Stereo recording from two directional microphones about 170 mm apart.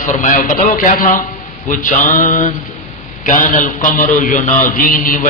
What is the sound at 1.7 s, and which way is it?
A man's voice, 50° left (ahead or behind).